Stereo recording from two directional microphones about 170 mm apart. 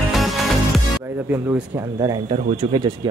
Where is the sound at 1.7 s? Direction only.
25° right (ahead or behind).